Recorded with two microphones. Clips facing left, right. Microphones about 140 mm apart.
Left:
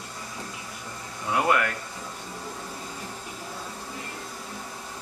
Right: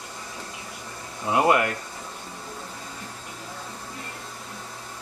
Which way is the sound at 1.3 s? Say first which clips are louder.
Right 3 dB; 25° right (ahead or behind).